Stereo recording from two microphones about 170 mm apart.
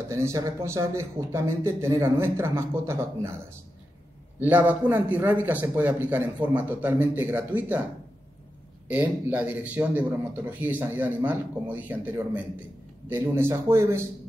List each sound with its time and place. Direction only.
0.1 s a man's voice: 15° right (ahead or behind)
4.4 s a man's voice: 10° right (ahead or behind)
8.8 s a man's voice: 10° right (ahead or behind)